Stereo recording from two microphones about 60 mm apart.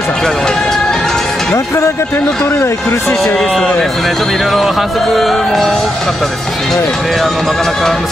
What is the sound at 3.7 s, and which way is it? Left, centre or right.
A man's voice, centre.